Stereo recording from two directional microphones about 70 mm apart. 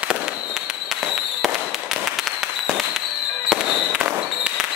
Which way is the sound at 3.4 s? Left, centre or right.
Centre.